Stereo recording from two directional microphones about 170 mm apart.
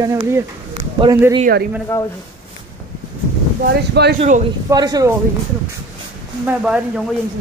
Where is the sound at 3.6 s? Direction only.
75° right (ahead or behind).